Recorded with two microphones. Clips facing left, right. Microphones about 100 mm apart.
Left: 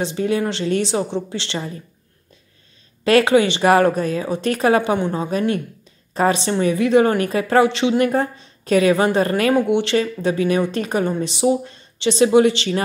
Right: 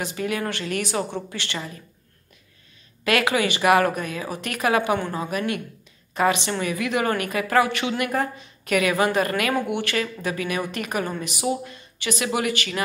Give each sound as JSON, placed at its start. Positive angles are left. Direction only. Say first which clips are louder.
{"t": 0.0, "sound": "a woman's voice", "louder": "left 6 dB", "side_deg": 25}
{"t": 3.0, "sound": "a woman's voice", "louder": "left 7 dB", "side_deg": 30}